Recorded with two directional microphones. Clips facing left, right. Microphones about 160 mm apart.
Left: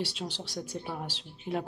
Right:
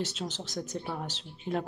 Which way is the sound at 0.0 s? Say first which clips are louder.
Right 1 dB; 10° left (ahead or behind).